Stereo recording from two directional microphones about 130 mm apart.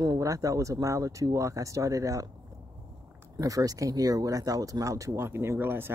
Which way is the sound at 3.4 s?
25° right (ahead or behind).